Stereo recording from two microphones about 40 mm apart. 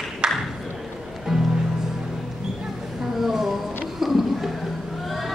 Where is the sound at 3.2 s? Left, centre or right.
Centre.